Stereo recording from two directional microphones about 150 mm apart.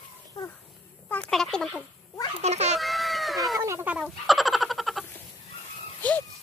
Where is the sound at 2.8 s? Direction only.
Centre (ahead or behind).